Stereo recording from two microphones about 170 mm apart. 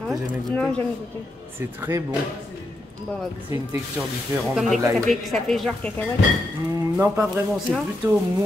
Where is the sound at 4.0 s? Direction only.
10° right (ahead or behind); by 6.1 s 10° left (ahead or behind).